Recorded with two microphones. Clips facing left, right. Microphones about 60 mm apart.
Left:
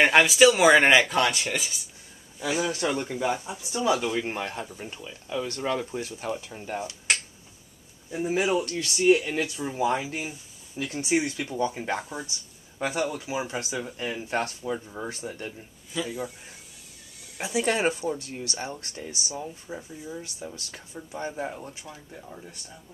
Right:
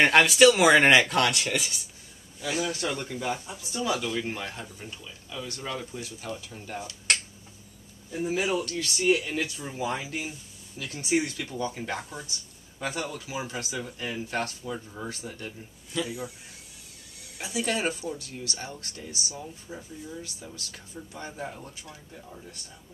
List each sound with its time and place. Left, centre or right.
0.0 s speech: centre
2.4 s speech: centre; by 7.0 s left
8.3 s speech: left
15.9 s speech: centre
17.4 s speech: left